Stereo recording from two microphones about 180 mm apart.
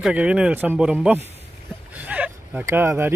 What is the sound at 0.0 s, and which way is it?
Speech, 5° right (ahead or behind).